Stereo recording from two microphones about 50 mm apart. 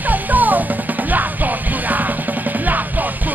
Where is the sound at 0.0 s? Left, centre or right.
Right.